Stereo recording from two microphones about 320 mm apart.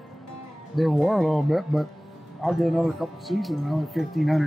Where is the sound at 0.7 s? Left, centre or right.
Centre.